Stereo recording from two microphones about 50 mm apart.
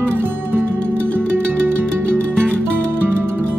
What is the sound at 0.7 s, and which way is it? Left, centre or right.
Music, left.